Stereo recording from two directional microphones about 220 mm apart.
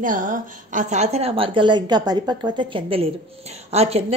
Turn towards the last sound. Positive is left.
turn(degrees=-30)  # may be behind; listen again after turning